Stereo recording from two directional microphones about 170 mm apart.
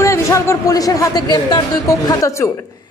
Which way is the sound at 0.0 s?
15° left (ahead or behind).